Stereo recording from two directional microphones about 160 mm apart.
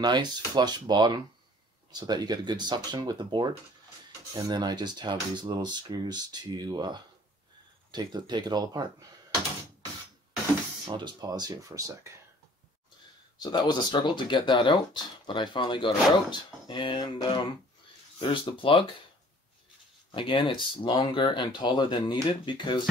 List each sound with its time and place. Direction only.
0.0 s speech: 30° right (ahead or behind)
10.9 s speech: 30° right (ahead or behind)
13.4 s speech: 25° left (ahead or behind)
20.2 s speech: 30° left (ahead or behind)